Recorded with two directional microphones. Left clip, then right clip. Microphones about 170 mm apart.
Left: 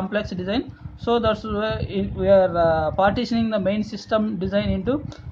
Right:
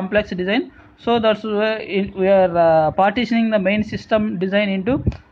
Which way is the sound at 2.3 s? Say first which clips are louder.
Right 3 dB; 20° right (ahead or behind).